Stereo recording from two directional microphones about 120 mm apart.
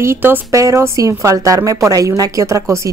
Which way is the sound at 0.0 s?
20° right (ahead or behind).